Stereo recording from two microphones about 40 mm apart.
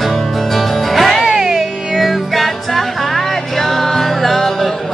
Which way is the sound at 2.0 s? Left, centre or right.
Centre.